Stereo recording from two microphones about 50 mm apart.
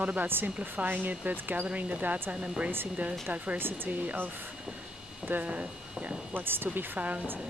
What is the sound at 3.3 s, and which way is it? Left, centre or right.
Speech, right.